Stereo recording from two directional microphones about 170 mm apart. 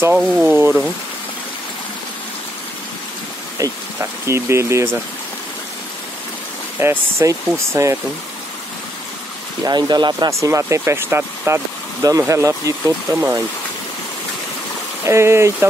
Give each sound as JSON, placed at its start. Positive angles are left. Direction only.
{"t": 0.0, "sound": "speech", "side_deg": -5}
{"t": 3.5, "sound": "speech", "side_deg": -20}
{"t": 6.8, "sound": "speech", "side_deg": -15}
{"t": 9.7, "sound": "speech", "side_deg": -25}
{"t": 15.0, "sound": "speech", "side_deg": -15}